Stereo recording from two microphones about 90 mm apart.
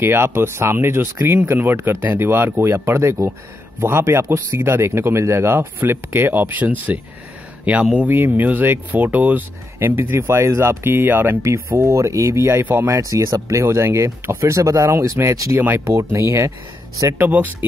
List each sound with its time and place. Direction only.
0.0 s speech: 25° right (ahead or behind)
11.4 s speech: 35° right (ahead or behind)
12.9 s speech: 40° right (ahead or behind)
17.2 s speech: 20° right (ahead or behind)